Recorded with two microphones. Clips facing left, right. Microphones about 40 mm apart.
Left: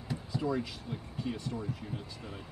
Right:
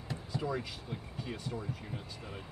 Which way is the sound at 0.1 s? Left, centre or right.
Centre.